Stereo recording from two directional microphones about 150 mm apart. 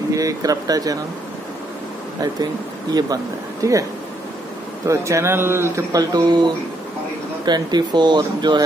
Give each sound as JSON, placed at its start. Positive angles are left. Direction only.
{"t": 0.1, "sound": "a man's voice", "side_deg": -25}
{"t": 2.9, "sound": "a man's voice", "side_deg": -25}
{"t": 4.8, "sound": "a man's voice", "side_deg": -20}
{"t": 7.4, "sound": "a man's voice", "side_deg": -30}